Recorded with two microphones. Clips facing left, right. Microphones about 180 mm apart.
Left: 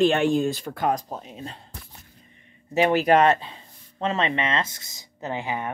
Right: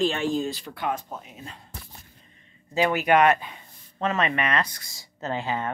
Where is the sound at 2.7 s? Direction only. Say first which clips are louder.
Left 2 dB; 25° left (ahead or behind).